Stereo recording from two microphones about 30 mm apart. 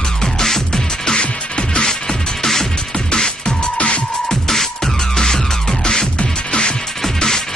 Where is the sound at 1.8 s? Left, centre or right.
Left.